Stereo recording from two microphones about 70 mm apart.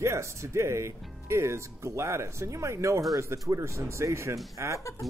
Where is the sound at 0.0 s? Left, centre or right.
Right.